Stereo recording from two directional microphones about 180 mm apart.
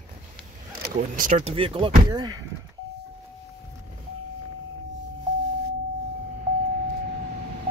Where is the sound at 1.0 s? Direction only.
45° right (ahead or behind).